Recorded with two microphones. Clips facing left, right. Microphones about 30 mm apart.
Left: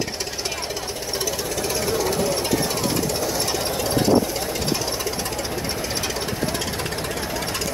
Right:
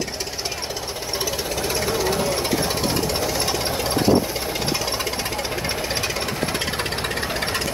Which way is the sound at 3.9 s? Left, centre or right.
Centre.